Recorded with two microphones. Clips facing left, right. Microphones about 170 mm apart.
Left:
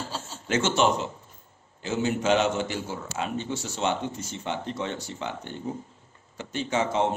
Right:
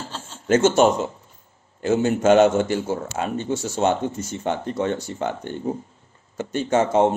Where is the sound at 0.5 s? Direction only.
45° right (ahead or behind).